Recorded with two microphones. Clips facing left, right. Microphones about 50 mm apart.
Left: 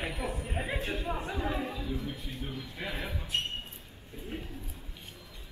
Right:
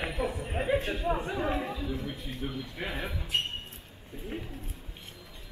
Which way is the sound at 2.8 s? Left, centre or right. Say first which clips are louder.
Right 2 dB; right.